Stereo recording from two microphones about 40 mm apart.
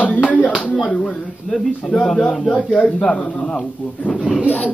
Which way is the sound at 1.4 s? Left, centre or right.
Centre.